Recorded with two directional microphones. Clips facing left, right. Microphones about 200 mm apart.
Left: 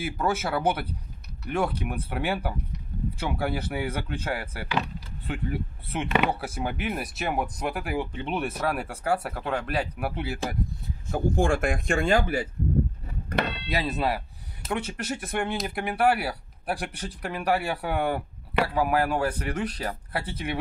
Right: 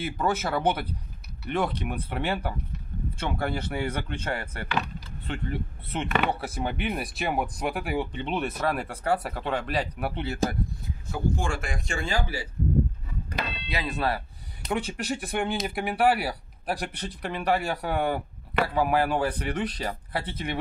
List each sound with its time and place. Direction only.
0.0 s speech: 10° left (ahead or behind)
11.1 s speech: 50° left (ahead or behind)
13.3 s a sound: 55° left (ahead or behind)
13.9 s speech: 10° left (ahead or behind)
14.6 s speech: centre (ahead or behind)